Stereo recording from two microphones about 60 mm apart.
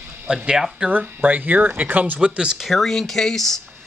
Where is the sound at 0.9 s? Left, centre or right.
Right.